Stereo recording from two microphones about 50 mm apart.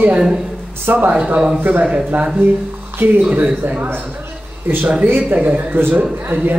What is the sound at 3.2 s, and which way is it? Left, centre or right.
Speech, right.